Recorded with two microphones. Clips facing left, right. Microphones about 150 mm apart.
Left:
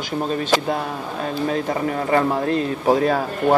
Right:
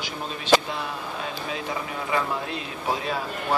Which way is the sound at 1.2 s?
45° left (ahead or behind).